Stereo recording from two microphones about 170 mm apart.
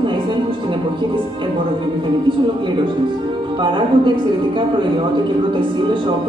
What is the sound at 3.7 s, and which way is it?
Speech, 30° right (ahead or behind).